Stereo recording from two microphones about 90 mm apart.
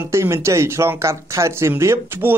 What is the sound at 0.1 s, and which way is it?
Speech, 30° right (ahead or behind).